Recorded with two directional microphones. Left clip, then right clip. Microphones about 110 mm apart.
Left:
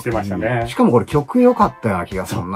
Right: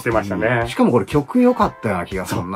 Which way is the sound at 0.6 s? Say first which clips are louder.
Left 2 dB; 20° left (ahead or behind).